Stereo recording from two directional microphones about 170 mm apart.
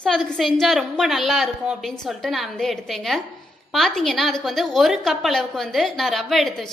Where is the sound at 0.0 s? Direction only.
5° left (ahead or behind).